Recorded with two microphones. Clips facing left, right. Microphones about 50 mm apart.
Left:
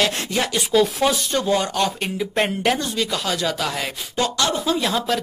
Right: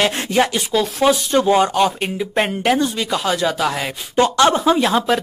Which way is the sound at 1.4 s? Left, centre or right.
Right.